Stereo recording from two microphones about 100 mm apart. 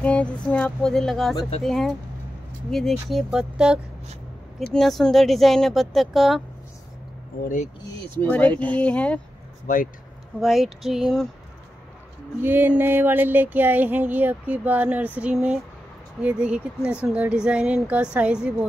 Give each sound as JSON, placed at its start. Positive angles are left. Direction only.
{"t": 0.0, "sound": "speech", "side_deg": 15}
{"t": 4.6, "sound": "speech", "side_deg": 0}
{"t": 8.2, "sound": "speech", "side_deg": 15}
{"t": 10.4, "sound": "speech", "side_deg": 0}
{"t": 12.4, "sound": "a sound", "side_deg": -20}
{"t": 15.3, "sound": "speech", "side_deg": -5}